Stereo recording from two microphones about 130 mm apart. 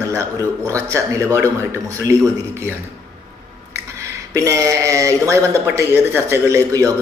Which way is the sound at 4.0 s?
25° right (ahead or behind).